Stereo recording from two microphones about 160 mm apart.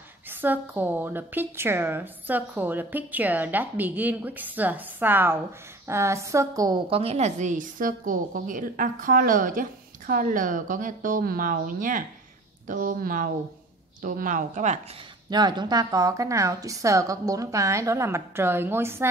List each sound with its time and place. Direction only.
0.3 s a woman's voice: 10° right (ahead or behind)
6.9 s a woman's voice: 40° right (ahead or behind)
15.2 s a woman's voice: 25° right (ahead or behind)